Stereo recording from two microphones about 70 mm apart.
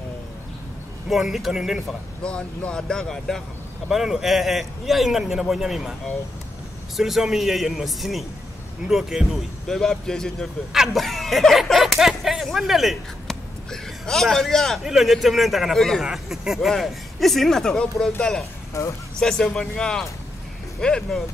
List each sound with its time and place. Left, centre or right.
1.0 s speech: centre
2.2 s speech: centre
3.9 s speech: centre
7.0 s speech: centre
9.7 s speech: centre
10.7 s speech: centre
16.0 s speech: centre
18.7 s speech: left
19.1 s speech: centre